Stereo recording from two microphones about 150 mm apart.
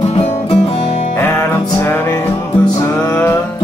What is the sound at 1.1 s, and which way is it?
Music, 15° left (ahead or behind).